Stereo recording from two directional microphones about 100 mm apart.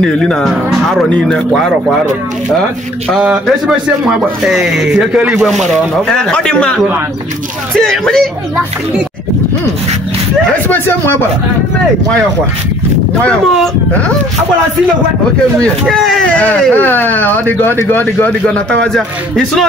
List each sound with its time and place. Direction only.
0.0 s speech: 5° left (ahead or behind)
3.2 s speech: 5° right (ahead or behind)
6.0 s speech: 5° left (ahead or behind)
10.7 s speech: 20° left (ahead or behind)
13.2 s speech: 10° left (ahead or behind)
15.9 s speech: 5° left (ahead or behind)